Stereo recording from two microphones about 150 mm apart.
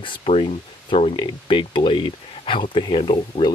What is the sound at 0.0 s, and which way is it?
Speech, 40° left (ahead or behind).